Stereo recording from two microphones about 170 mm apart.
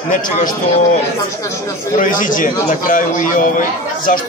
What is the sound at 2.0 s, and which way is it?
A man's voice, 50° left (ahead or behind).